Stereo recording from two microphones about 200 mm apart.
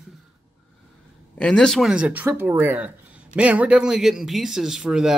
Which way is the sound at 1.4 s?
5° left (ahead or behind).